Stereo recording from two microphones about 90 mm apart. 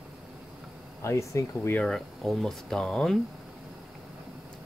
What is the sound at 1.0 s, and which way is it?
Speech, 30° left (ahead or behind).